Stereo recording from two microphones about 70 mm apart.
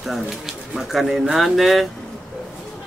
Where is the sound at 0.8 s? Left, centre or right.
Centre.